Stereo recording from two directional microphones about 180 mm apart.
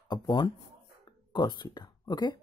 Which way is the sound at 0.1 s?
25° left (ahead or behind).